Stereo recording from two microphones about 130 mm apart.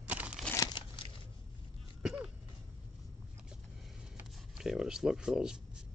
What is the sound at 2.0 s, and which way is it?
Throat clearing, 5° right (ahead or behind).